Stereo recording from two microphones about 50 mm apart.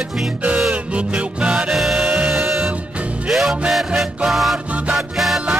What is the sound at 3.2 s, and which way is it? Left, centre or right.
Music, centre.